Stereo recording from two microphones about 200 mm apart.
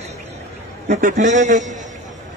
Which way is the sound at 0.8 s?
45° right (ahead or behind).